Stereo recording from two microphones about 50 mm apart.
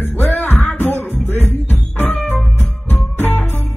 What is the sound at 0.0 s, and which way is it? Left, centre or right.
Music, left.